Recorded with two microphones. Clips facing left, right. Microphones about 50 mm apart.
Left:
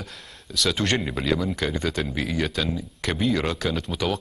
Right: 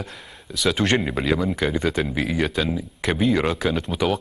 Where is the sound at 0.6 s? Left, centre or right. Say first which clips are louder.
Right 3 dB; centre.